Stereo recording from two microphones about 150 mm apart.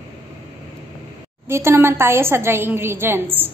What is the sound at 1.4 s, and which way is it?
A woman's voice, 15° right (ahead or behind).